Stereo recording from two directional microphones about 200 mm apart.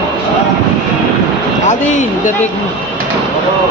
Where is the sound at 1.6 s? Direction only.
40° left (ahead or behind).